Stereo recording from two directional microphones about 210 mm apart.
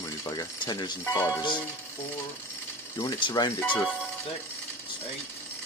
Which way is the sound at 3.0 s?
20° left (ahead or behind).